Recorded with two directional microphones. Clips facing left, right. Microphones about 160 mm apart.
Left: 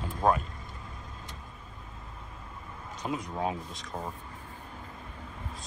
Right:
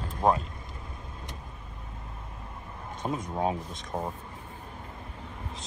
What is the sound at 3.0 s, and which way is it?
Speech, 40° right (ahead or behind).